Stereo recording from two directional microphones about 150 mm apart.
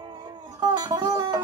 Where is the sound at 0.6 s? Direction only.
25° right (ahead or behind).